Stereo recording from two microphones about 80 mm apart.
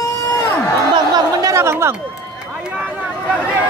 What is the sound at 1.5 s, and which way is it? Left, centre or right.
Chatter, right.